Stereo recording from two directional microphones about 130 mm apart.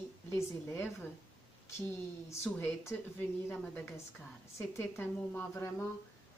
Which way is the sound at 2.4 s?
15° left (ahead or behind).